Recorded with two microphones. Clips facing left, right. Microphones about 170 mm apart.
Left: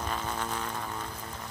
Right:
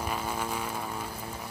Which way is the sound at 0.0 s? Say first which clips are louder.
Right 1 dB; 10° right (ahead or behind).